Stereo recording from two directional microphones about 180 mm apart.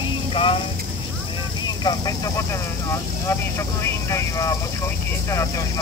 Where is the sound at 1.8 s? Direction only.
20° left (ahead or behind).